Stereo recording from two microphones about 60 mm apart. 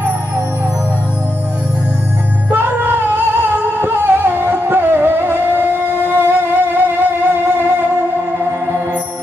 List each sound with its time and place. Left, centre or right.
2.5 s music: right